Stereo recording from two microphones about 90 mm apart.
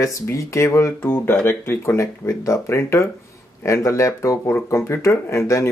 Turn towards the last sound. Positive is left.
turn(degrees=35)  # may be behind; listen again after turning